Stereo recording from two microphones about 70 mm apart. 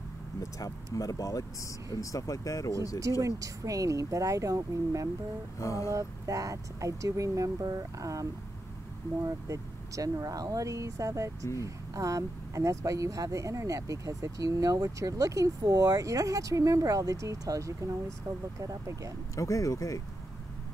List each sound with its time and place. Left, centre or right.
0.4 s speech: left
3.0 s speech: right
5.6 s speech: left
5.9 s speech: right
19.3 s speech: left